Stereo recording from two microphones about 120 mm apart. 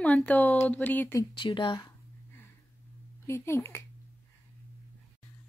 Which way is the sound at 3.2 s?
25° left (ahead or behind).